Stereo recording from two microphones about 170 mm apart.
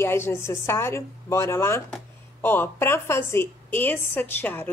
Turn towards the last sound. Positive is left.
turn(degrees=10)  # may be behind; listen again after turning